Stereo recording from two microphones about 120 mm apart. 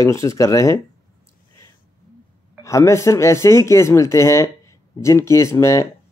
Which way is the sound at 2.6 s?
25° left (ahead or behind).